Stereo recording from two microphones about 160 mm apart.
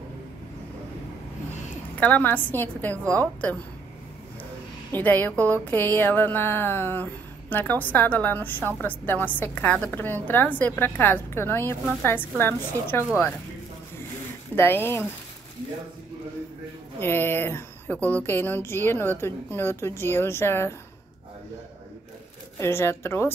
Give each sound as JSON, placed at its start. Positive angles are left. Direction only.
{"t": 2.0, "sound": "speech", "side_deg": 10}
{"t": 4.9, "sound": "speech", "side_deg": 10}
{"t": 14.5, "sound": "speech", "side_deg": 15}
{"t": 17.0, "sound": "speech", "side_deg": 15}
{"t": 22.6, "sound": "speech", "side_deg": 15}